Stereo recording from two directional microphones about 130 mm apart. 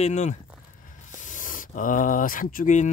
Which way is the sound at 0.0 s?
65° left (ahead or behind).